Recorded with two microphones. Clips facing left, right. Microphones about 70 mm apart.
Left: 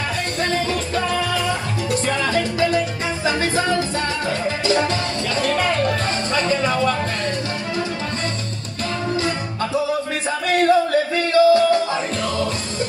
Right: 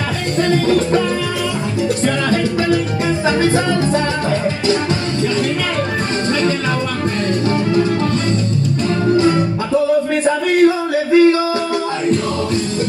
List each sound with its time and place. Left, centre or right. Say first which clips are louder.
10.9 s music: right 8 dB; right